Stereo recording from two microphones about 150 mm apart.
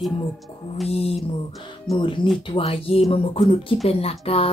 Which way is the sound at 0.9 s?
40° left (ahead or behind).